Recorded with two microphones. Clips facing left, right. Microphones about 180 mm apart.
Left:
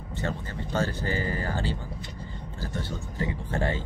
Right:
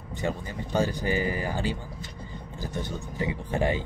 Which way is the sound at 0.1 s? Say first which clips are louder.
Right 2 dB; 15° right (ahead or behind).